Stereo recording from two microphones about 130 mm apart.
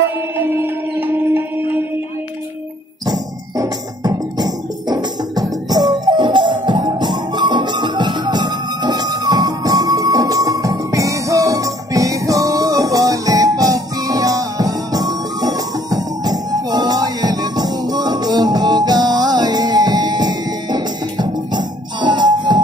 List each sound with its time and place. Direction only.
0.4 s music: 15° right (ahead or behind)
3.1 s music: 30° right (ahead or behind)